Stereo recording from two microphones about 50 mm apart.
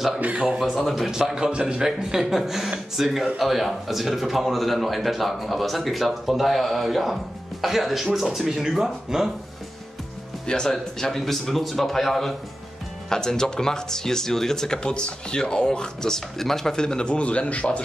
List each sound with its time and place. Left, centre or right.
0.2 s speech: right
0.6 s speech: centre
1.1 s a man's voice: centre
1.9 s speech: centre
10.4 s speech: centre